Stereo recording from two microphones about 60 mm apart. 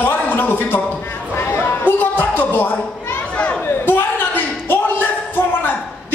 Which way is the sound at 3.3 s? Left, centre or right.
Left.